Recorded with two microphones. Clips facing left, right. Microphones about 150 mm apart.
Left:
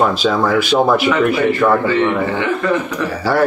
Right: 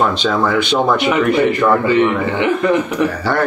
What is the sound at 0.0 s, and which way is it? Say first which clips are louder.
Speech: left 1 dB; 5° left (ahead or behind).